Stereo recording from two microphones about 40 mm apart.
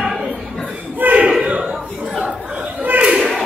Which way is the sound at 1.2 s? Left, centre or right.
Right.